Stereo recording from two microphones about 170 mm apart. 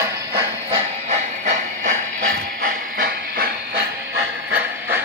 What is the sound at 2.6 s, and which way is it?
Hiss, 60° right (ahead or behind).